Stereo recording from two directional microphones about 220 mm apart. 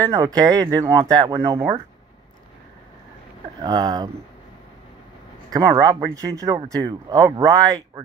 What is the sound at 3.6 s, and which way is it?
Speech, 20° right (ahead or behind).